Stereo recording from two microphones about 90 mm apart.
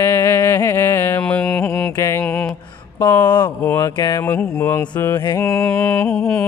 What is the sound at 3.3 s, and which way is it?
Speech, 50° left (ahead or behind).